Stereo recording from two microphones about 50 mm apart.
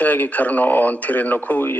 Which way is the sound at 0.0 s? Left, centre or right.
Left.